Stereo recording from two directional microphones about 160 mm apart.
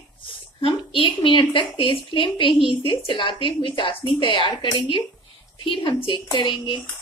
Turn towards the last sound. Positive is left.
turn(degrees=30)  # may be behind; listen again after turning